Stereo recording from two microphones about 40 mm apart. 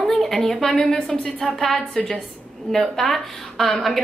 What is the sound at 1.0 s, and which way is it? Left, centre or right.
Speech, left.